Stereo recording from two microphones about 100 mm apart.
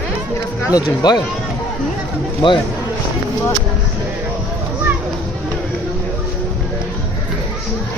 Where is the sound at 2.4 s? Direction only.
50° left (ahead or behind).